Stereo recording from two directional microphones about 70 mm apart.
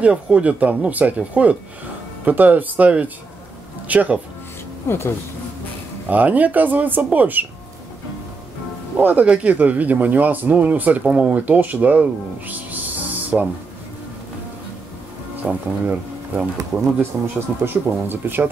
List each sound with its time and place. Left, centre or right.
0.0 s speech: centre
4.8 s speech: left
6.0 s speech: right
8.9 s speech: right
15.4 s speech: centre
17.6 s speech: right